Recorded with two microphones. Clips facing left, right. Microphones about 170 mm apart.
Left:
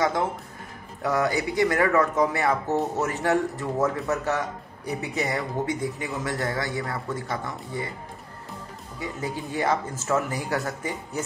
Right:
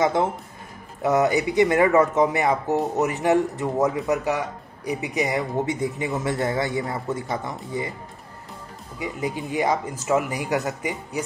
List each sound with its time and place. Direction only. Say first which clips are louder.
0.0 s speech: right 3 dB; 20° right (ahead or behind)
9.0 s speech: right 3 dB; 15° right (ahead or behind)